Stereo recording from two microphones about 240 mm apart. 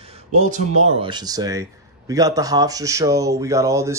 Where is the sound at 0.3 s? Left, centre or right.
Right.